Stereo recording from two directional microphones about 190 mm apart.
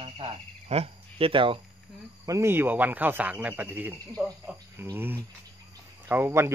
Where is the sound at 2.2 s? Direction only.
15° right (ahead or behind).